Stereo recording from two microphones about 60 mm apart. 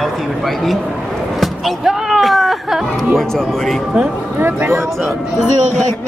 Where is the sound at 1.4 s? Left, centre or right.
Centre.